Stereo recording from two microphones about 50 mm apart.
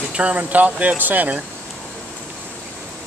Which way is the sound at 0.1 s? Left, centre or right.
Right.